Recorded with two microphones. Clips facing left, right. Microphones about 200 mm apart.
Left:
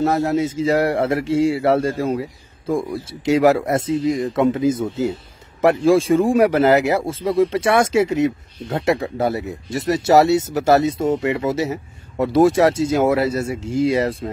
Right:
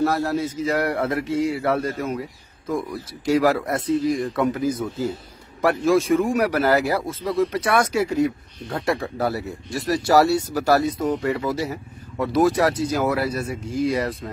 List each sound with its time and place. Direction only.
0.0 s speech: 20° left (ahead or behind)